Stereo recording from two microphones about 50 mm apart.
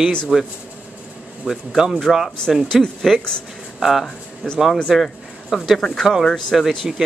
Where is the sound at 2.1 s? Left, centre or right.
Centre.